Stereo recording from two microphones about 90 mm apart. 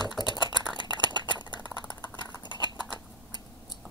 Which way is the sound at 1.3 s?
55° left (ahead or behind).